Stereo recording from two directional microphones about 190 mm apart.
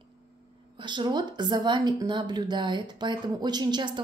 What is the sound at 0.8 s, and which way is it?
Speech, 25° right (ahead or behind).